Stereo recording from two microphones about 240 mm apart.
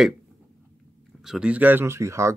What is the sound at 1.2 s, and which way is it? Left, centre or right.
Speech, centre.